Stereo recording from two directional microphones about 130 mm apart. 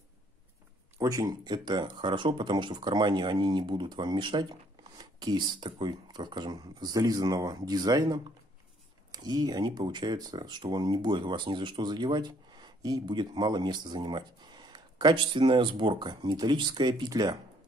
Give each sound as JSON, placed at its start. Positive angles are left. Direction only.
{"t": 0.9, "sound": "speech", "side_deg": -25}